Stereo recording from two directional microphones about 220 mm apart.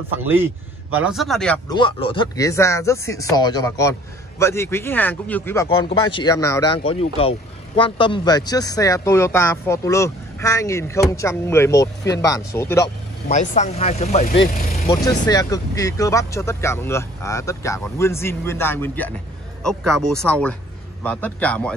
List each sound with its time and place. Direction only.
0.2 s a man's voice: 10° right (ahead or behind)
1.7 s a man's voice: 20° left (ahead or behind)
5.7 s a man's voice: 20° left (ahead or behind)
13.3 s speech: 35° left (ahead or behind)
14.5 s vehicle: 40° left (ahead or behind)
15.2 s a man's voice: 15° left (ahead or behind)